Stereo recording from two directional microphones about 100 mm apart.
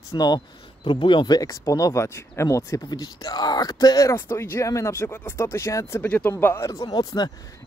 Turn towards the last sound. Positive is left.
turn(degrees=45)  # may be behind; listen again after turning